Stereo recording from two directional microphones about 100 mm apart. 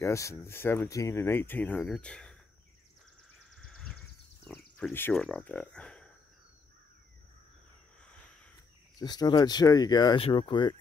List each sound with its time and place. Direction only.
0.0 s speech: 30° left (ahead or behind); by 2.3 s 10° left (ahead or behind)
3.5 s a sound: 5° left (ahead or behind)
5.1 s speech: 5° left (ahead or behind)
8.0 s a sound: 10° left (ahead or behind)
8.9 s speech: 45° left (ahead or behind)
10.1 s speech: 60° left (ahead or behind)